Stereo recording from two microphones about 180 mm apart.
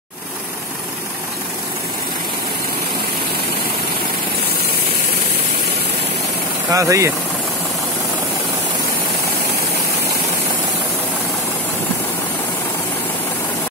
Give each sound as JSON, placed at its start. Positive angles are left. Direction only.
{"t": 6.7, "sound": "speech", "side_deg": -15}